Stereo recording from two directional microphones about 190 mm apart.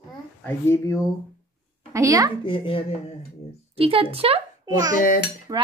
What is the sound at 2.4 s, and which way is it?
Speech, 25° left (ahead or behind).